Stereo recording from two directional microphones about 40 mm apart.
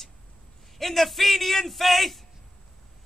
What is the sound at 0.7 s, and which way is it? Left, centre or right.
A man's voice, centre.